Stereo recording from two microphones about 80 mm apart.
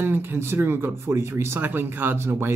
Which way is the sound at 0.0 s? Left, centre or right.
Right.